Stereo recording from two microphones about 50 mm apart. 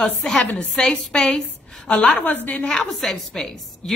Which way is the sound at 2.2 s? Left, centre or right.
Left.